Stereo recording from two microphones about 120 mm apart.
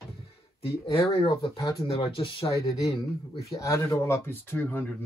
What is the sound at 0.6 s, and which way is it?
Speech, 45° left (ahead or behind).